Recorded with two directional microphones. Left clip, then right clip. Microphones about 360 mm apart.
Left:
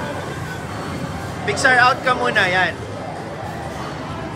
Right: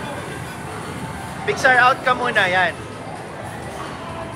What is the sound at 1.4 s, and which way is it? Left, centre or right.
Speech, centre.